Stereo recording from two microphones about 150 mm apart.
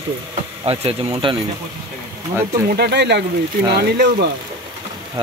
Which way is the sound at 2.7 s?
90° right.